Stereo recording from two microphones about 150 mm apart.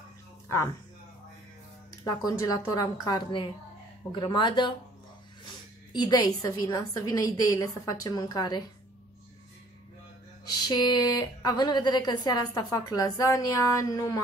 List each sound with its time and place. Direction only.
2.0 s speech: 25° left (ahead or behind)
5.9 s speech: 25° left (ahead or behind)
10.4 s speech: 30° left (ahead or behind)